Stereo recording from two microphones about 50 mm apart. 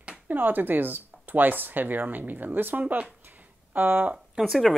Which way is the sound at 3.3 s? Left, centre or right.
Right.